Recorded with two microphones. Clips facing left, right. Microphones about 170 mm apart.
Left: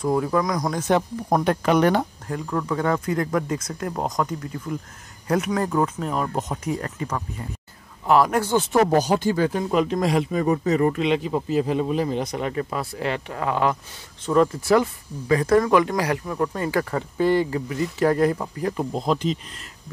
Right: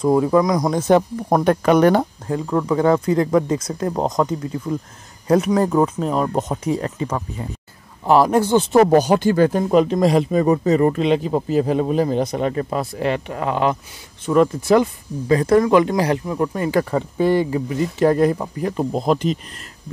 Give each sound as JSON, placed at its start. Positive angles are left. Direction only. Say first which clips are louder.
{"t": 0.0, "sound": "speech", "louder": "right 6 dB", "side_deg": -25}
{"t": 0.9, "sound": "speech", "louder": "right 4 dB", "side_deg": -50}
{"t": 2.2, "sound": "speech", "louder": "right 6 dB", "side_deg": -25}
{"t": 8.9, "sound": "speech", "louder": "right 5 dB", "side_deg": -65}
{"t": 9.5, "sound": "speech", "louder": "right 6 dB", "side_deg": -40}
{"t": 12.3, "sound": "speech", "louder": "right 5 dB", "side_deg": -30}
{"t": 15.2, "sound": "speech", "louder": "right 3 dB", "side_deg": -30}
{"t": 19.0, "sound": "speech", "louder": "right 4 dB", "side_deg": -55}